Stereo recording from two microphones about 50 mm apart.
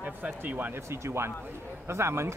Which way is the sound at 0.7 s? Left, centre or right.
Right.